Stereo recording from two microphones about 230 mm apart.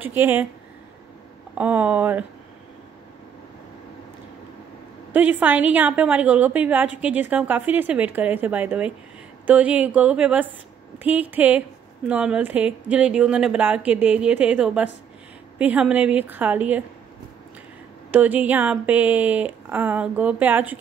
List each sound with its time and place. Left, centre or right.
0.0 s a woman's voice: centre
1.5 s a woman's voice: centre
5.1 s a woman's voice: centre
18.1 s a woman's voice: centre